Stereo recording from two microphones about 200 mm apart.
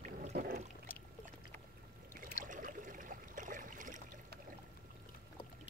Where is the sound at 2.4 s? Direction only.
40° right (ahead or behind).